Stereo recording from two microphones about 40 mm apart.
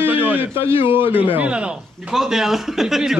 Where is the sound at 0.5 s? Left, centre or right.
Right.